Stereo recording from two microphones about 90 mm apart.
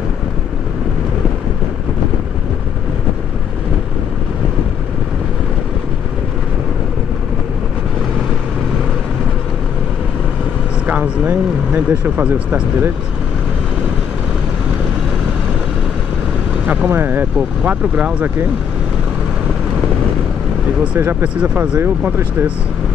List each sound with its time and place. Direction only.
10.9 s speech: 15° right (ahead or behind)
16.6 s speech: 20° right (ahead or behind)
21.0 s speech: 20° right (ahead or behind)